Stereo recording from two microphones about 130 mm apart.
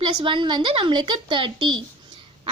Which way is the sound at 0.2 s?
40° right (ahead or behind).